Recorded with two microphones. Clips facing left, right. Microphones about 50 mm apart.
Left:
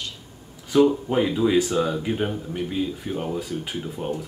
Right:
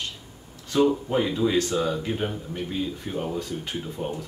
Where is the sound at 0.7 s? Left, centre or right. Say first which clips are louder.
Left 3 dB; centre.